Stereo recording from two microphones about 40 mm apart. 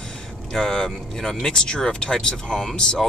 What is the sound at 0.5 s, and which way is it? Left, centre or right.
Speech, centre.